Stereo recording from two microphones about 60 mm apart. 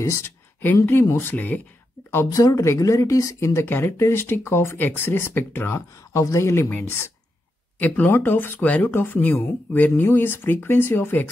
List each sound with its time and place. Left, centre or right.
0.0 s speech: left
1.0 s speech: left
1.3 s speech: left
2.3 s speech: left
3.6 s speech: left
5.9 s speech: left
7.8 s speech: left
8.5 s speech: left
8.9 s speech: left